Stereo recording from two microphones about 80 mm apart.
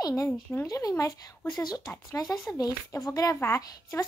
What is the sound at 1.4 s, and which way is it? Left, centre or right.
Speech, left.